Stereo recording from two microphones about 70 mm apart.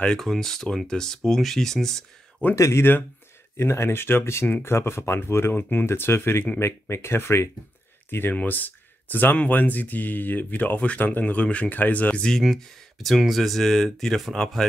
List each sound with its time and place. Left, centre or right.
0.2 s speech: centre
2.5 s speech: left
3.5 s speech: left; by 12.3 s centre
12.3 s speech: centre